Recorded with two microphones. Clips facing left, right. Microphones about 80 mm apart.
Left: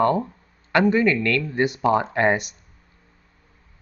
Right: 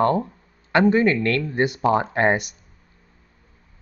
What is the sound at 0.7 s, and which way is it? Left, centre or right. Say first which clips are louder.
Speech: right 1 dB; right.